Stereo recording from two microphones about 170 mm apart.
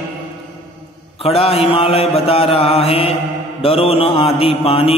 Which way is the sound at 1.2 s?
35° left (ahead or behind).